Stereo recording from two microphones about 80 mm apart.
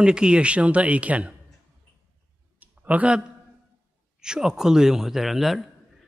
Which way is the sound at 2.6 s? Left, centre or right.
Centre.